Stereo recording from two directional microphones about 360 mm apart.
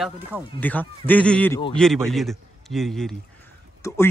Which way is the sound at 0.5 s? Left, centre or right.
Centre.